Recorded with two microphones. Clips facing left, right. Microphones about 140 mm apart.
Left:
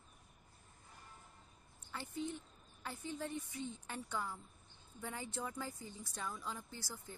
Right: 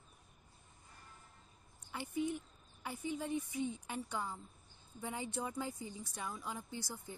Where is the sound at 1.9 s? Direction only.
15° right (ahead or behind).